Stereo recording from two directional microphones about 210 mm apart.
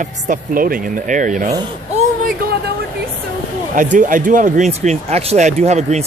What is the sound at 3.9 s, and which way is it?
Speech, 40° right (ahead or behind).